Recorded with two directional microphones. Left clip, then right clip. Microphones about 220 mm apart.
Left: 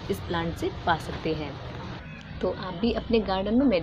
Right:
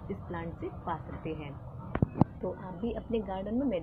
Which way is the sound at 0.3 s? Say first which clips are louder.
Left 9 dB; 20° left (ahead or behind).